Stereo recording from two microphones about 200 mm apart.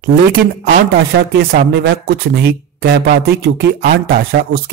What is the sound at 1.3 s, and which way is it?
Speech, 50° right (ahead or behind).